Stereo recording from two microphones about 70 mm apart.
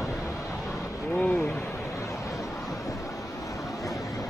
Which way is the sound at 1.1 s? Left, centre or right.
Left.